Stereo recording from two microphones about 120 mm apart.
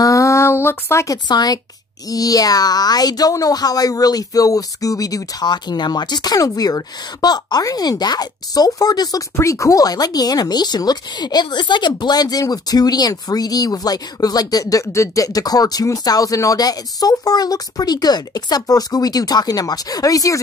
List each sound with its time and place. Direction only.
0.0 s speech: 25° left (ahead or behind)